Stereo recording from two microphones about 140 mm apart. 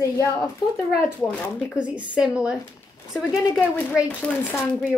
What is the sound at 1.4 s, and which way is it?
Speech, 10° left (ahead or behind).